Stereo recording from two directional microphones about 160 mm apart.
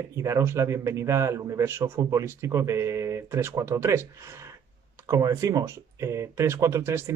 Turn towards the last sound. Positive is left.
turn(degrees=-15)  # may be behind; listen again after turning